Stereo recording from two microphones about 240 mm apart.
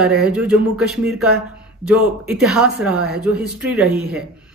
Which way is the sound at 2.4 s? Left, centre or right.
Centre.